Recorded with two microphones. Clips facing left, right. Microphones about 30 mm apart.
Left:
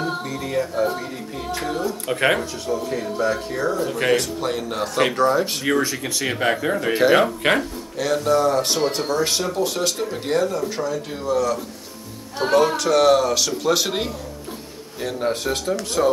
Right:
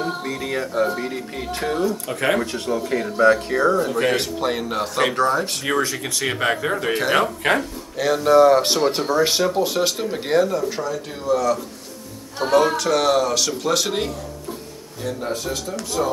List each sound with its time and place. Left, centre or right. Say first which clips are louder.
0.5 s speech: even; right
2.7 s speech: right 1 dB; right
4.4 s speech: right 2 dB; centre
4.7 s speech: left 2 dB; centre
6.9 s speech: left 4 dB; centre
8.0 s speech: right 5 dB; centre
15.0 s speech: left 3 dB; centre